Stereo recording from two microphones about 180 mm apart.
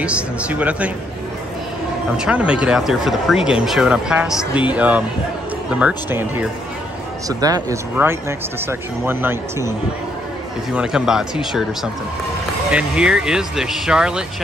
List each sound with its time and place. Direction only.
0.0 s speech: 5° right (ahead or behind)
2.2 s speech: 5° right (ahead or behind)